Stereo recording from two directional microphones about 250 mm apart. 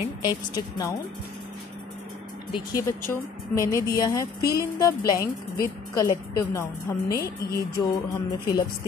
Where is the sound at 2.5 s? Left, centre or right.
Centre.